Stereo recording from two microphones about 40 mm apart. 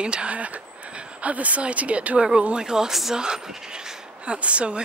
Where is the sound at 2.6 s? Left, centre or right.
Centre.